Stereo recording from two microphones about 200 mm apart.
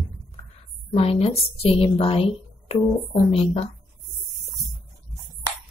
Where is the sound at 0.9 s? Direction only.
30° left (ahead or behind).